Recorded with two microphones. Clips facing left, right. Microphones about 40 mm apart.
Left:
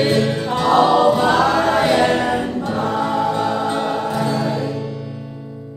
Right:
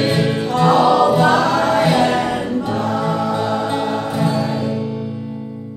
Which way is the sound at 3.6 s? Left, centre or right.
Centre.